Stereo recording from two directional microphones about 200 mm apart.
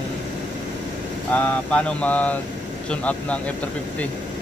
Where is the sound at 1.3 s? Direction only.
5° left (ahead or behind).